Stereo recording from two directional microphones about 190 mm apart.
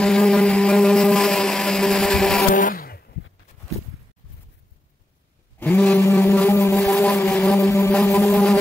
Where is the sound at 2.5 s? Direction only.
45° left (ahead or behind).